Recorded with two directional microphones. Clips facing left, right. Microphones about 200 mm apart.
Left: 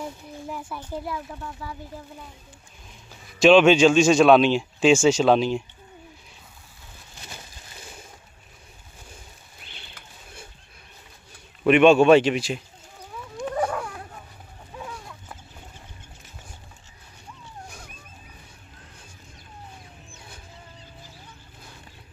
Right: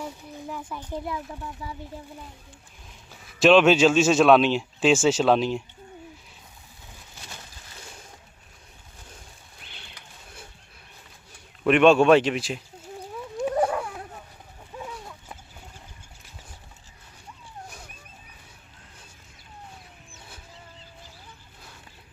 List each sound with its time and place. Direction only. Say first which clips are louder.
0.0 s speech: left 1 dB; 10° left (ahead or behind)
1.6 s speech: left 1 dB; 20° right (ahead or behind)
3.3 s speech: left 2 dB; centre (ahead or behind)
11.6 s speech: left 2 dB; centre (ahead or behind)
13.4 s a sound: right 2 dB; 5° right (ahead or behind)